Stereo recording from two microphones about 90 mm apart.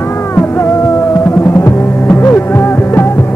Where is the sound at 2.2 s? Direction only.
25° left (ahead or behind).